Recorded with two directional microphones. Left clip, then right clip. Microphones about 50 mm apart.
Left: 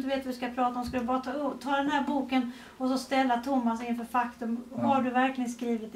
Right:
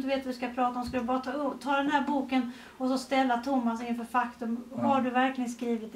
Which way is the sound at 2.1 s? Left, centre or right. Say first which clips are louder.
Even; centre.